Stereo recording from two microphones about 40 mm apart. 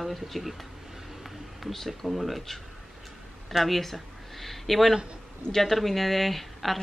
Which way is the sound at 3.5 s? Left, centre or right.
Centre.